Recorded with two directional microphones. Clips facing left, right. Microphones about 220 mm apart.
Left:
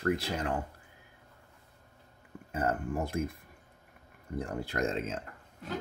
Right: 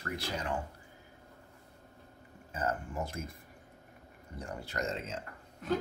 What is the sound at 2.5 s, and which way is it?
Speech, 60° left (ahead or behind).